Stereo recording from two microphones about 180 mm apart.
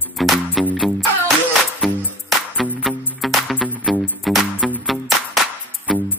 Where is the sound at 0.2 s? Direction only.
Centre (ahead or behind).